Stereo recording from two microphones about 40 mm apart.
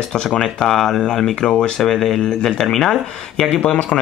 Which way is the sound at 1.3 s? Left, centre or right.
Centre.